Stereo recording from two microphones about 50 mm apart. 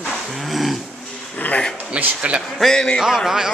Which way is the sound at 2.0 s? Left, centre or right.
Right.